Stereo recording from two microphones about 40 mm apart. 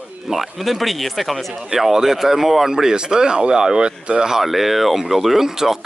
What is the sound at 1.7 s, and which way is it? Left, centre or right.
Speech, centre.